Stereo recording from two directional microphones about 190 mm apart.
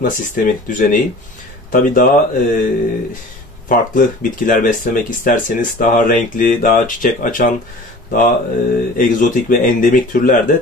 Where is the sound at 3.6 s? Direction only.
45° left (ahead or behind).